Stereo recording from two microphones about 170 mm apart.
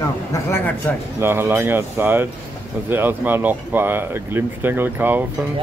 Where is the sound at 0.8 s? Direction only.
10° left (ahead or behind).